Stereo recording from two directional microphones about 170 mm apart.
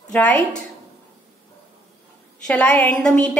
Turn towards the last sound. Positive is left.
turn(degrees=5)  # may be behind; listen again after turning